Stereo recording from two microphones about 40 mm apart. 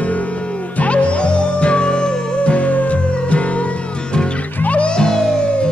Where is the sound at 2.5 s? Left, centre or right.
Left.